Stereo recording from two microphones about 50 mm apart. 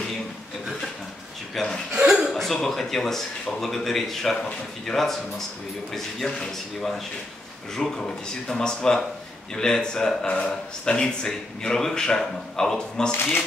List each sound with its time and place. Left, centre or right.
1.6 s speech: centre
2.0 s chuckle: centre
2.3 s speech: centre
13.1 s speech: left